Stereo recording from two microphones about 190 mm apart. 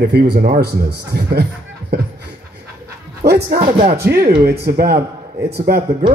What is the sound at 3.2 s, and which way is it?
A man's voice, 55° right (ahead or behind).